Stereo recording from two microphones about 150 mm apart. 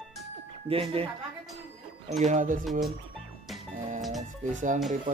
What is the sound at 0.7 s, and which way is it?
Speech, 40° right (ahead or behind).